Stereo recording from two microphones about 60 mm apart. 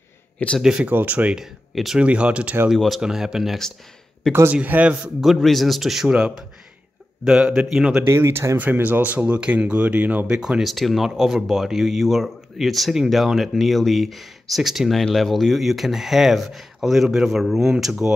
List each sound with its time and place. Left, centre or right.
0.6 s speech: centre
0.8 s speech: right
1.3 s speech: centre
2.0 s speech: centre
2.7 s speech: centre
4.5 s speech: right
5.2 s speech: centre
8.1 s speech: right
8.5 s speech: right
10.2 s speech: centre
10.6 s speech: centre